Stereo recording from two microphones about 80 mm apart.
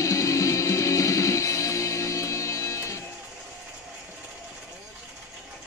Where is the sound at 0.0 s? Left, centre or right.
Left.